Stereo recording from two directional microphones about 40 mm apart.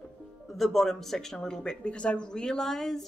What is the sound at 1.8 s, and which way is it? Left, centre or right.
Speech, left.